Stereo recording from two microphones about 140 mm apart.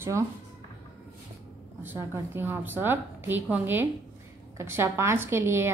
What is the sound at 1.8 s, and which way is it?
A woman's voice, 15° right (ahead or behind).